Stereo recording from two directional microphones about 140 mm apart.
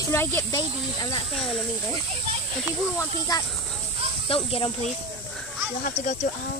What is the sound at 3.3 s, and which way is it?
Speech, 25° left (ahead or behind).